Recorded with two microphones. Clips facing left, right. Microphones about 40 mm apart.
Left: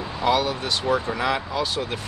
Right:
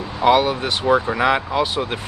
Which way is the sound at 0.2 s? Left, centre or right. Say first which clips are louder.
Right 6 dB; right.